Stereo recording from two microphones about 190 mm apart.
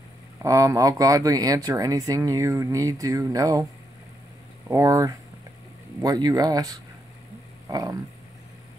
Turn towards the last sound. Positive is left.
turn(degrees=-20)  # may be behind; listen again after turning